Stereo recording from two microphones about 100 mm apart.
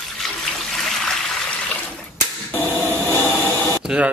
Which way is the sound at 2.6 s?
20° left (ahead or behind).